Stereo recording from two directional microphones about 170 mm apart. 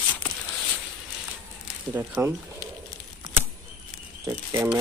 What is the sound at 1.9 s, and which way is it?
Speech, 10° right (ahead or behind).